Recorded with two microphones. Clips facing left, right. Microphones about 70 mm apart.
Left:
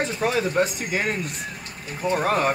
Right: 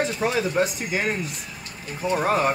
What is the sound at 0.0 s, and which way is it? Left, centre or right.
Speech, centre.